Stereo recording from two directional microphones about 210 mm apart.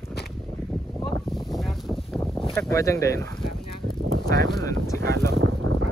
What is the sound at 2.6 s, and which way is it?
Speech, 15° left (ahead or behind).